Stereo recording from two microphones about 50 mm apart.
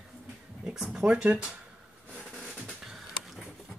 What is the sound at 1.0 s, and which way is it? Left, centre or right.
Speech, right.